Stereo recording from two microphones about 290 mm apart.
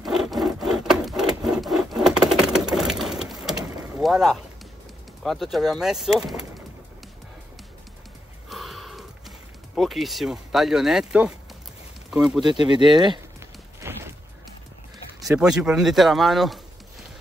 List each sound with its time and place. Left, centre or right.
0.0 s wood: centre
4.0 s speech: centre
8.5 s gasp: centre
9.8 s speech: centre
12.3 s speech: centre
13.7 s a sound: centre
15.2 s speech: centre